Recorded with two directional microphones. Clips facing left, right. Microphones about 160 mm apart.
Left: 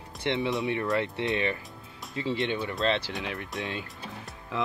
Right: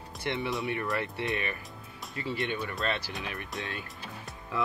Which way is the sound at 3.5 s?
Centre (ahead or behind).